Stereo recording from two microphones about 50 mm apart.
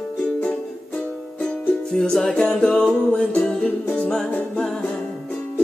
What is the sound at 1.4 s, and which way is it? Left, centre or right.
Music, centre.